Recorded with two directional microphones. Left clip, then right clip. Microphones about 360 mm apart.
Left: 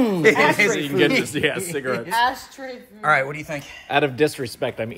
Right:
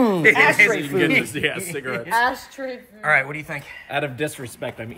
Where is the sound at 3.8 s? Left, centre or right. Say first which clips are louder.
Left 6 dB; centre.